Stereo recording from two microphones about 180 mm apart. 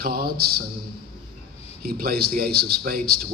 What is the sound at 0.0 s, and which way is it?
Speech, 55° right (ahead or behind).